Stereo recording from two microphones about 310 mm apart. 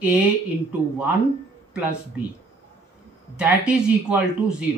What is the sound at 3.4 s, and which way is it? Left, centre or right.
Speech, centre.